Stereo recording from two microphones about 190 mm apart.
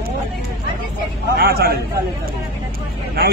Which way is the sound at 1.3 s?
55° right (ahead or behind).